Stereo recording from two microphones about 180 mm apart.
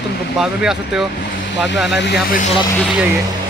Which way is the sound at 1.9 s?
75° left (ahead or behind).